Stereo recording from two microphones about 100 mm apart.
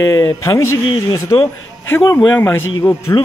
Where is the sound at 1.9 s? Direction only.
20° left (ahead or behind).